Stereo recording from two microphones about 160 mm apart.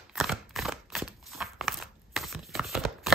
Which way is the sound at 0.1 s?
Centre (ahead or behind).